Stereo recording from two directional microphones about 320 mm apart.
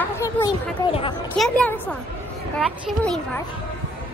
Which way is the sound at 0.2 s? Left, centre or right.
Centre.